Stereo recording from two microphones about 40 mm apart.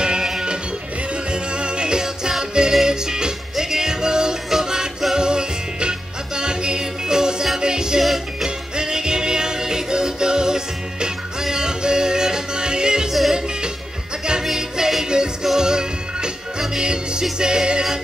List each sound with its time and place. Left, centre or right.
0.0 s music: centre
8.0 s music: centre
8.5 s music: centre
14.4 s music: centre